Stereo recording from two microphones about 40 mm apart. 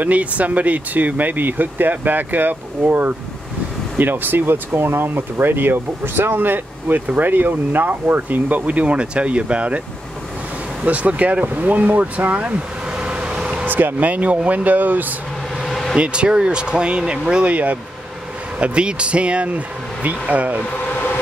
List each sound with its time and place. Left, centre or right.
0.0 s speech: right
10.9 s speech: right
12.9 s vehicle: right
13.7 s speech: right
15.5 s vehicle: centre
16.0 s speech: right